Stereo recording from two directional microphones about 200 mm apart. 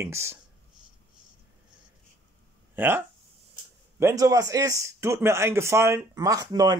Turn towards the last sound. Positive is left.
turn(degrees=-20)  # may be behind; listen again after turning